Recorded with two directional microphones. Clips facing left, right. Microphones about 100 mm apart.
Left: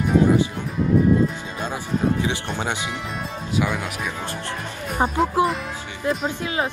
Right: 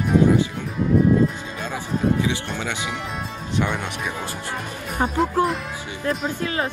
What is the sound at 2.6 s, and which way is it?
Speech, 20° left (ahead or behind).